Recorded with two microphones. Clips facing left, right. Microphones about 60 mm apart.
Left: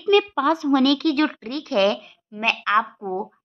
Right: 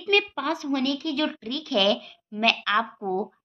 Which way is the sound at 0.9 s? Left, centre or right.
Left.